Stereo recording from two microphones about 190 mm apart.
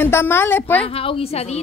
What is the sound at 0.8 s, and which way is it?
Speech, 30° left (ahead or behind).